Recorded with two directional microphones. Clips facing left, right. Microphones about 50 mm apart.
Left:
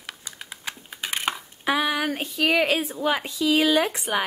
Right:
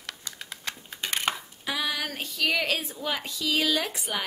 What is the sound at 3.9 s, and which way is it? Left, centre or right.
Speech, left.